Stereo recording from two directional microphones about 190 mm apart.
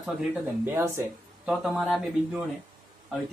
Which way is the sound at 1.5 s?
Centre (ahead or behind).